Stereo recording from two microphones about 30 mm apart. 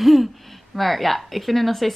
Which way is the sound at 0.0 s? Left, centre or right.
Centre.